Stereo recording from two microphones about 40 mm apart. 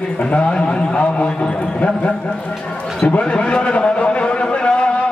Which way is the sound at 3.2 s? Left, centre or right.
Left.